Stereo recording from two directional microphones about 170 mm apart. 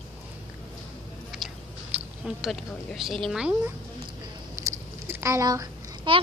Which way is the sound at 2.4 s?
Centre (ahead or behind).